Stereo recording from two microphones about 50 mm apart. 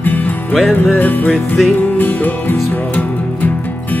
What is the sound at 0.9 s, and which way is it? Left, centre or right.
Music, left.